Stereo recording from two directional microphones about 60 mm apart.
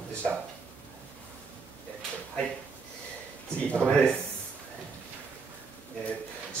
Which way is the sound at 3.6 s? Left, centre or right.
Centre.